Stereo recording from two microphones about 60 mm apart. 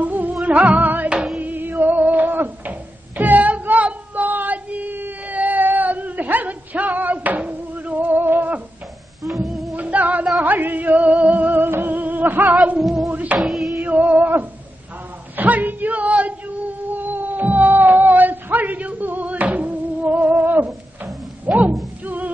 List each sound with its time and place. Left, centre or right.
0.0 s music: right
1.1 s music: centre
1.4 s a sound: right
9.3 s music: centre
9.8 s music: right
12.8 s music: centre
13.1 s music: right
13.4 s a sound: centre
13.7 s music: right
15.3 s a sound: right
22.0 s music: right